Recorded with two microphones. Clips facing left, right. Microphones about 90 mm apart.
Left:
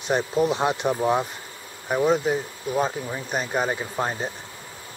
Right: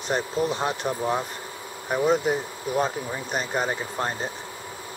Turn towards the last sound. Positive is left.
turn(degrees=5)  # may be behind; listen again after turning